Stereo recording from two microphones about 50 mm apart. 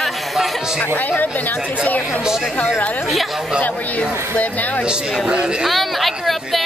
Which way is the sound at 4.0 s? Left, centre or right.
Left.